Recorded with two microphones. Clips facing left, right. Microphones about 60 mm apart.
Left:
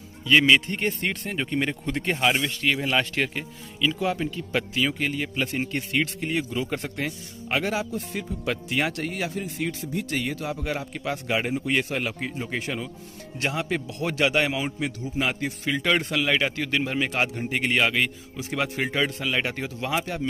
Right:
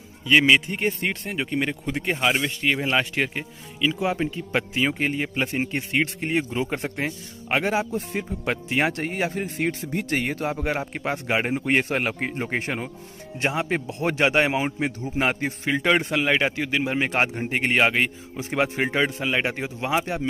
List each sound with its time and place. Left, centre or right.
0.2 s speech: centre; by 12.9 s right
13.4 s speech: right
17.0 s speech: right